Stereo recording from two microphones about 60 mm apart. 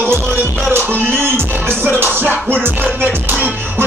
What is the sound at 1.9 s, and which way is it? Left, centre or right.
Music, right.